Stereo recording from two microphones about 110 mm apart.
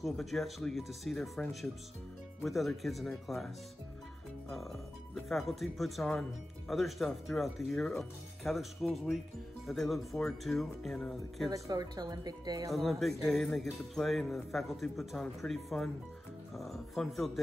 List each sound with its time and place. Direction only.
0.0 s jingle bell: centre (ahead or behind)
11.4 s speech: 35° right (ahead or behind)
12.7 s jingle bell: centre (ahead or behind)